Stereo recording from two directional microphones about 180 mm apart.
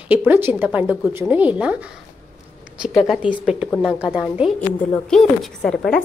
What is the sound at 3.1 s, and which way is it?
Speech, 5° right (ahead or behind).